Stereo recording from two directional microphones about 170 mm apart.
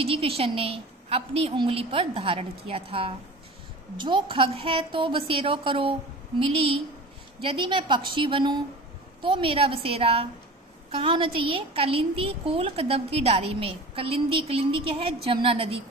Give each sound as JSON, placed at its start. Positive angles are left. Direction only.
{"t": 0.0, "sound": "a woman's voice", "side_deg": -35}